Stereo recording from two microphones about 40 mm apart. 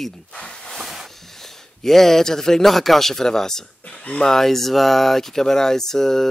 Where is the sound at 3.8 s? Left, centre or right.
Left.